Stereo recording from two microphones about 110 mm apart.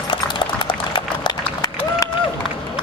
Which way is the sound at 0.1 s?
45° left (ahead or behind).